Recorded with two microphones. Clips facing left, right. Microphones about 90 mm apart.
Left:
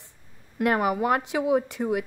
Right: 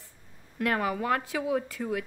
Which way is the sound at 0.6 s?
20° left (ahead or behind).